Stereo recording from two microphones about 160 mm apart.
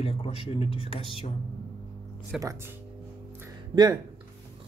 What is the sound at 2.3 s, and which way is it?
Speech, centre (ahead or behind).